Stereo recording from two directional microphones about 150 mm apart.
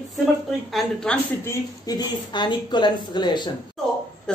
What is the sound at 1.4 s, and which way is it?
A woman's voice, 25° left (ahead or behind).